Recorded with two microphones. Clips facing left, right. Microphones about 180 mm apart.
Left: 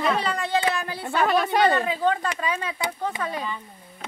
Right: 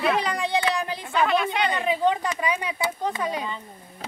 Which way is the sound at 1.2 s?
45° left (ahead or behind).